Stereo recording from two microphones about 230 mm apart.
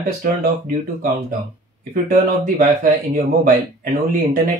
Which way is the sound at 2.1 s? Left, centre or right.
Right.